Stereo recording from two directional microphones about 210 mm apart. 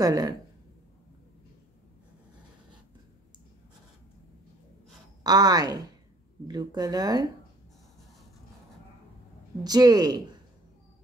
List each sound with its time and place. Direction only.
0.0 s speech: 15° right (ahead or behind)
5.2 s speech: 20° right (ahead or behind)
9.6 s a woman's voice: 20° right (ahead or behind)